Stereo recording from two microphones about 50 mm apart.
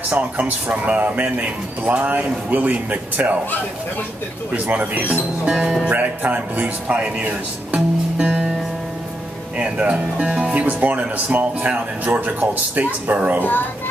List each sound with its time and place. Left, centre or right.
0.1 s speech: right
4.6 s speech: right
7.0 s speech: right
9.6 s speech: right
13.4 s a child's voice: left